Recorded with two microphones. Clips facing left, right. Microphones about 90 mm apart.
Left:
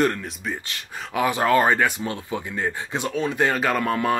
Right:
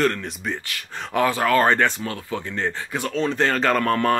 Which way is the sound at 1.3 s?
20° left (ahead or behind).